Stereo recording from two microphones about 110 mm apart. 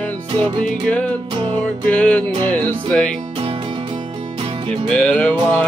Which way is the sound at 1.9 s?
10° left (ahead or behind).